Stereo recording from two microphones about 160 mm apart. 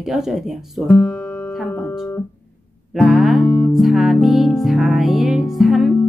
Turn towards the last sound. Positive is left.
turn(degrees=0)  # may be behind; listen again after turning